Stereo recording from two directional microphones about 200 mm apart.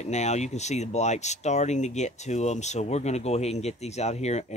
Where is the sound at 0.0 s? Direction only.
35° left (ahead or behind).